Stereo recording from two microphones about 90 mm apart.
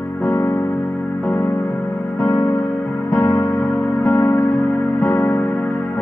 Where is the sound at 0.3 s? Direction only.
30° left (ahead or behind).